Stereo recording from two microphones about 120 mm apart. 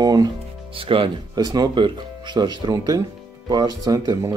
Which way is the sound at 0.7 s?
45° right (ahead or behind).